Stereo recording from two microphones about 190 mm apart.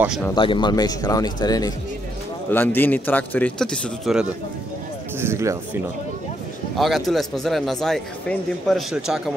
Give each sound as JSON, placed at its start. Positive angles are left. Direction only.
{"t": 0.3, "sound": "a man's voice", "side_deg": 25}
{"t": 5.2, "sound": "speech", "side_deg": -15}
{"t": 6.8, "sound": "a man's voice", "side_deg": 0}